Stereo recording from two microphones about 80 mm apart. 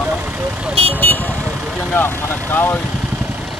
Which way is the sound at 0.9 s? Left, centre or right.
Left.